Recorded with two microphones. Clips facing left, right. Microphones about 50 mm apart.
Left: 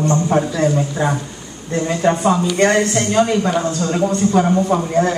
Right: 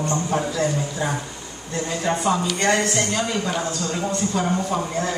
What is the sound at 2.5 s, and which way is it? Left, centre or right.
A woman's voice, left.